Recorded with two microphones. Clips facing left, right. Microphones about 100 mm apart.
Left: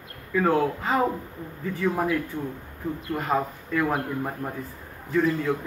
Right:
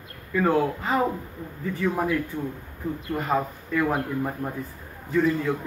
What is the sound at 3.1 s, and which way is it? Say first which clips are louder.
Speech: even; 5° left (ahead or behind).